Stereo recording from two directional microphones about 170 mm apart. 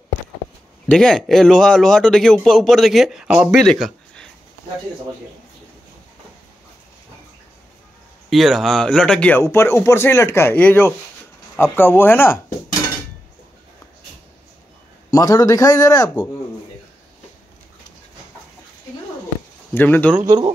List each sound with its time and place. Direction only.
0.8 s a man's voice: 5° left (ahead or behind)
8.3 s speech: centre (ahead or behind)
15.0 s a man's voice: 20° left (ahead or behind)
19.7 s speech: 10° left (ahead or behind)
20.2 s speech: 25° right (ahead or behind)